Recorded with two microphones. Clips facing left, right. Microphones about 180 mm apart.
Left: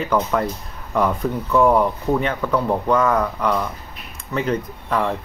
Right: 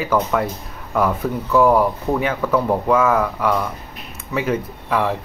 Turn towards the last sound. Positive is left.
turn(degrees=-5)  # may be behind; listen again after turning